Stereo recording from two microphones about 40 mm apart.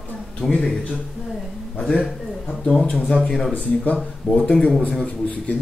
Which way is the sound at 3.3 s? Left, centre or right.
Centre.